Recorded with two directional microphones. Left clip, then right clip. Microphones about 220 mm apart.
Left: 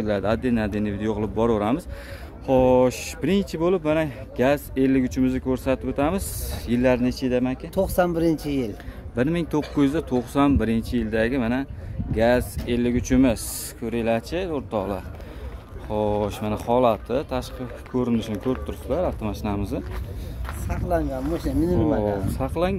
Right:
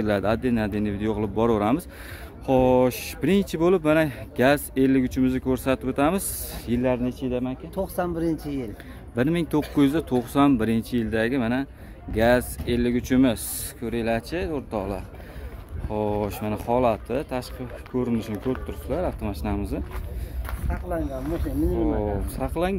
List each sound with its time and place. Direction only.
0.0 s speech: 15° right (ahead or behind)
6.8 s speech: 5° left (ahead or behind)
7.7 s speech: 30° left (ahead or behind)
9.1 s speech: 10° right (ahead or behind)
20.9 s speech: 45° left (ahead or behind)
21.8 s speech: centre (ahead or behind)